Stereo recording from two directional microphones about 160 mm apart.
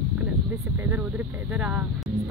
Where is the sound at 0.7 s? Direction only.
10° right (ahead or behind).